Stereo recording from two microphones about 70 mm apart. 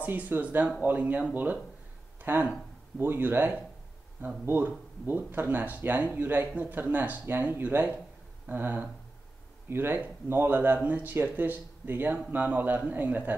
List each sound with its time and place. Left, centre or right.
0.0 s speech: right
2.3 s speech: right